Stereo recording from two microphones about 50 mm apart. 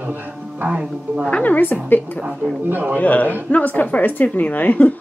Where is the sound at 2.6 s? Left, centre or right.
Right.